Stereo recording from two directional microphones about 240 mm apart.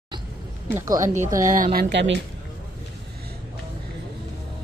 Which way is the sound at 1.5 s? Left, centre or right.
Right.